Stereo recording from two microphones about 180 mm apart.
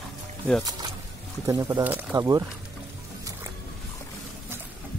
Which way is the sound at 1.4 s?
20° right (ahead or behind).